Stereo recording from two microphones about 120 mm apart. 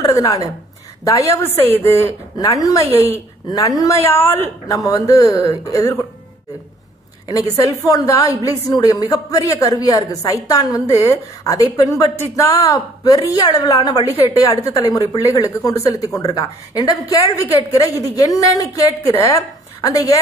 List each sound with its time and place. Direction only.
0.0 s a woman's voice: 30° left (ahead or behind)
7.2 s a woman's voice: 30° left (ahead or behind)